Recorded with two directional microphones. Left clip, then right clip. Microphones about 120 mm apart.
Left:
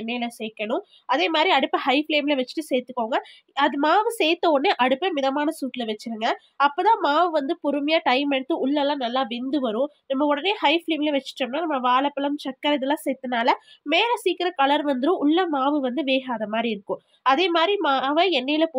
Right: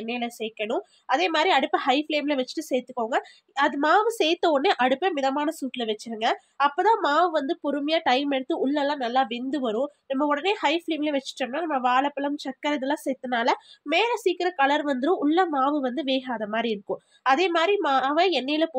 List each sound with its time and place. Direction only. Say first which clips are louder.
0.0 s speech: left 1 dB; 35° left (ahead or behind)
3.0 s speech: left 1 dB; 35° left (ahead or behind)